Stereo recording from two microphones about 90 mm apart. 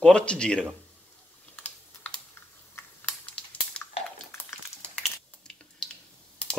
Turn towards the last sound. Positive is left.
turn(degrees=10)  # may be behind; listen again after turning